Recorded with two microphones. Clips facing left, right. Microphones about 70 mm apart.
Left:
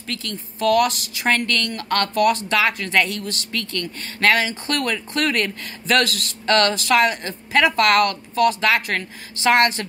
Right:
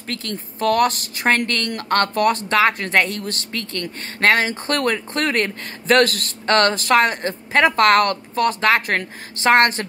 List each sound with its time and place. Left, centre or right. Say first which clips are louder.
0.1 s speech: right 2 dB; right